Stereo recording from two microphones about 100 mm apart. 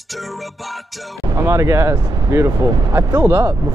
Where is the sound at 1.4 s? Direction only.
30° right (ahead or behind).